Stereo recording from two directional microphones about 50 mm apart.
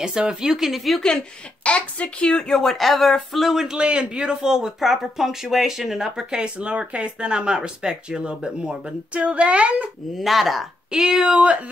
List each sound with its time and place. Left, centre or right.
0.0 s speech: centre
1.6 s speech: left
2.5 s speech: centre
3.6 s speech: centre
10.1 s speech: centre